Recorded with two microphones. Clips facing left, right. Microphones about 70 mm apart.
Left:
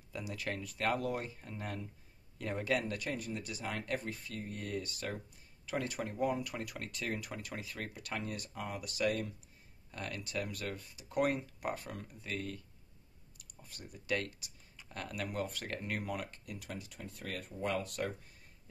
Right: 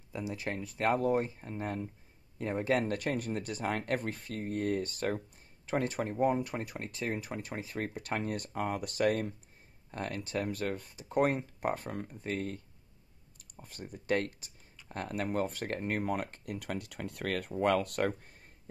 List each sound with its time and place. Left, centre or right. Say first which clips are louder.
0.1 s speech: right 4 dB; right
2.8 s speech: right 6 dB; right